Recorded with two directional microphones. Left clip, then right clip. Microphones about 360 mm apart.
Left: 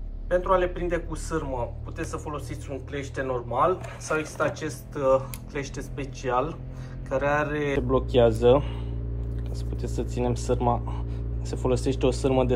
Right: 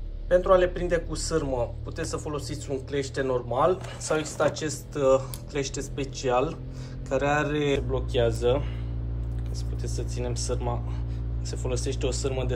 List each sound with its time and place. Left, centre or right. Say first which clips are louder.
0.3 s a man's voice: right 3 dB; centre
7.9 s speech: left 5 dB; centre
9.8 s speech: left 5 dB; centre